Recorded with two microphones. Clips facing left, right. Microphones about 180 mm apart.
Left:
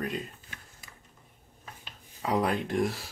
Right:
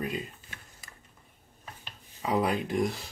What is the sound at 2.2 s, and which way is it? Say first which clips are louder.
Speech: even; centre (ahead or behind).